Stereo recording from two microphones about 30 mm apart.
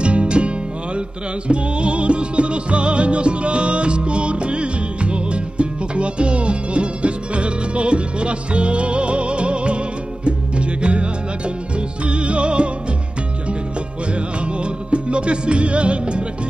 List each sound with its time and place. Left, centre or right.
0.0 s music: right
1.5 s music: right
14.1 s music: right